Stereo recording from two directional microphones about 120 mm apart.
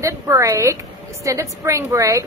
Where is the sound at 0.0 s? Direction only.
25° right (ahead or behind).